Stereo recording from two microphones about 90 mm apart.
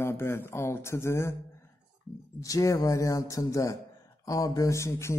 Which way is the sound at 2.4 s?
40° left (ahead or behind).